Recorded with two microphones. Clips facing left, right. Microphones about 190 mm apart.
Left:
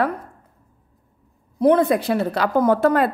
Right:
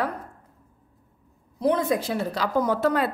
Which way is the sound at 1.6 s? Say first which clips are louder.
Left 7 dB; 60° left (ahead or behind).